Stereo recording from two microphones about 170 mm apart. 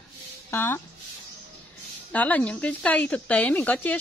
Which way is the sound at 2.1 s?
10° left (ahead or behind).